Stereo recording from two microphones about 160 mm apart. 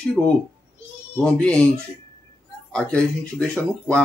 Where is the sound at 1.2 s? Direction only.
5° left (ahead or behind).